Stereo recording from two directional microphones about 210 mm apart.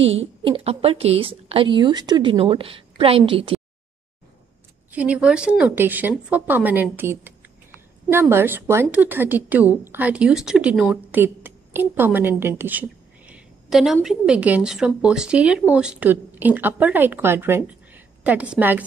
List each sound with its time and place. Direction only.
0.4 s a woman's voice: 25° right (ahead or behind)
4.9 s a woman's voice: 5° right (ahead or behind)